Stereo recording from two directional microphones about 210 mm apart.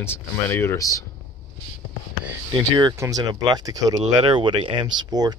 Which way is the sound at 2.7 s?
20° right (ahead or behind).